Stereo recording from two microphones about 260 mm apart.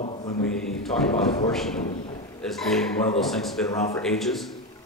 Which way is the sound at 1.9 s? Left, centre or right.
Left.